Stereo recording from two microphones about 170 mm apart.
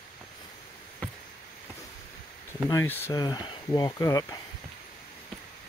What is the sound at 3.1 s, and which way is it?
Speech, 25° left (ahead or behind).